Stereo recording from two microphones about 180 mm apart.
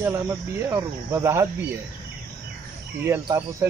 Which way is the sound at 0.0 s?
15° right (ahead or behind).